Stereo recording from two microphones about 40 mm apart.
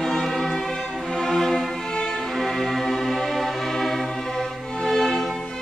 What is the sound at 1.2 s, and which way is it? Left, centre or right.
Music, centre.